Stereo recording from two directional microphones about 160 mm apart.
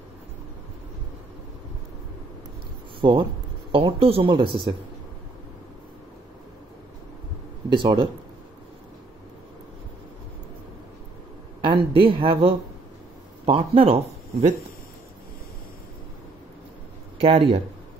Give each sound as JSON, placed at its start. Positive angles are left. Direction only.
{"t": 3.0, "sound": "speech", "side_deg": -30}
{"t": 7.7, "sound": "speech", "side_deg": -30}
{"t": 11.6, "sound": "speech", "side_deg": -35}
{"t": 17.2, "sound": "speech", "side_deg": -35}